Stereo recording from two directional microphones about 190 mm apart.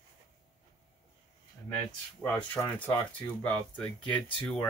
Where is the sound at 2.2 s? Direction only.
10° left (ahead or behind).